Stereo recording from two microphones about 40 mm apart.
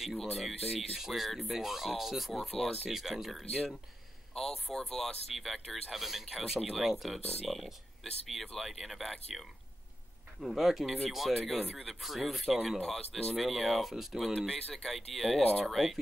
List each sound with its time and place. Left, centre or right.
0.2 s speech: centre
0.9 s speech: centre
4.6 s speech: centre
10.4 s speech: centre
12.8 s speech: centre
14.5 s speech: centre